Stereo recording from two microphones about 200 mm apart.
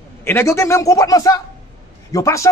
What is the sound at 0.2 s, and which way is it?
Speech, 10° left (ahead or behind).